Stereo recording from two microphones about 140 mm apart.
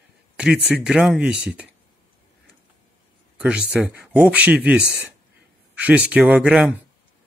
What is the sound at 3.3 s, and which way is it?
Speech, 5° right (ahead or behind).